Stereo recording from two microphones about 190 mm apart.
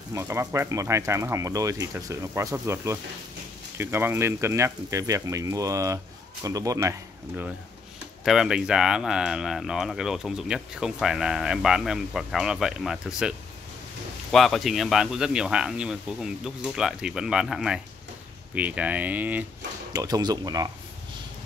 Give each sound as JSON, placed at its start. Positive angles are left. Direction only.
{"t": 0.1, "sound": "speech", "side_deg": -15}
{"t": 8.2, "sound": "speech", "side_deg": 0}
{"t": 14.3, "sound": "speech", "side_deg": 0}
{"t": 19.9, "sound": "speech", "side_deg": -20}